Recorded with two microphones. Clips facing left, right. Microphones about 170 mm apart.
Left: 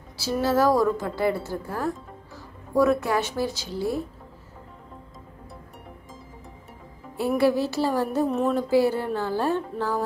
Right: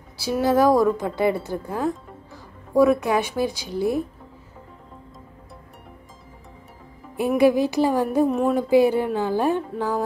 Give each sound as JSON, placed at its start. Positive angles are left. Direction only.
{"t": 0.2, "sound": "a woman's voice", "side_deg": -15}
{"t": 7.2, "sound": "a woman's voice", "side_deg": -15}
{"t": 8.3, "sound": "music", "side_deg": 0}
{"t": 8.5, "sound": "a woman's voice", "side_deg": -15}